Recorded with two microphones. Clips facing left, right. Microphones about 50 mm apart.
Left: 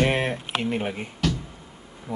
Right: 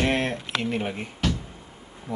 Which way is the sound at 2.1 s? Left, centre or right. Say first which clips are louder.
Even; centre.